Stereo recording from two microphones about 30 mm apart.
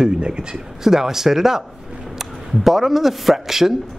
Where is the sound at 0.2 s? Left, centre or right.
Right.